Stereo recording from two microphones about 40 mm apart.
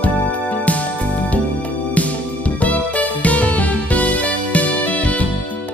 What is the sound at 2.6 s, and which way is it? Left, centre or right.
Music, left.